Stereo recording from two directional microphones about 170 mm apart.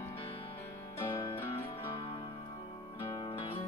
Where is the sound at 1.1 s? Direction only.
30° left (ahead or behind).